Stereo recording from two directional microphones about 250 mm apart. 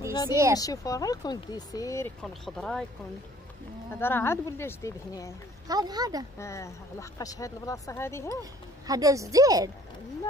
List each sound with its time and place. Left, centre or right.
0.3 s speech: centre
0.6 s speech: centre
3.9 s speech: centre
5.7 s speech: centre
6.3 s speech: centre
8.4 s speech: centre